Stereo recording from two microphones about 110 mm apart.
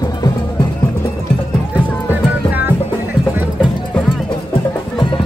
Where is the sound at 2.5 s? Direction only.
15° right (ahead or behind).